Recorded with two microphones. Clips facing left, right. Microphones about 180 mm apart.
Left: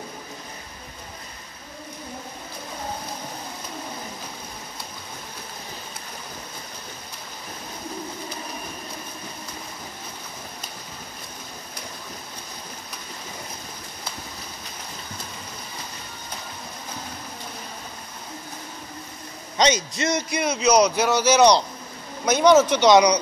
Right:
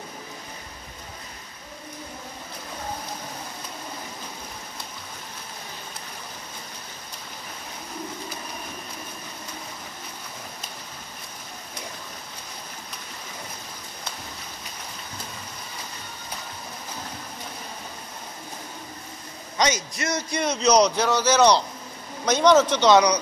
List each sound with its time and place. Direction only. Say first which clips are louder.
19.6 s a man's voice: left 4 dB; 20° left (ahead or behind)
20.2 s speech: right 2 dB; 5° left (ahead or behind)